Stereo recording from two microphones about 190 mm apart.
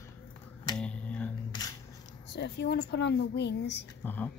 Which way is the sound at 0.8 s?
5° left (ahead or behind).